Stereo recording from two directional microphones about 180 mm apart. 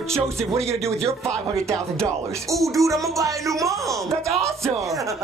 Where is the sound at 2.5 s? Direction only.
15° right (ahead or behind).